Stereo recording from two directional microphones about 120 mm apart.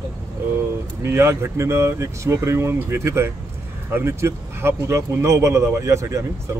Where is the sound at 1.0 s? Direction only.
20° right (ahead or behind).